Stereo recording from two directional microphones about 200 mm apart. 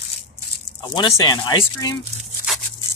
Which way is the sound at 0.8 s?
20° left (ahead or behind).